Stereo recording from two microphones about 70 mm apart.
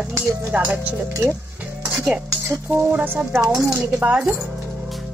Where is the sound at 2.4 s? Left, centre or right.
Right.